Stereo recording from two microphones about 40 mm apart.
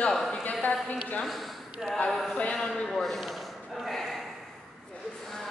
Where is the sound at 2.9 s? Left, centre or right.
Centre.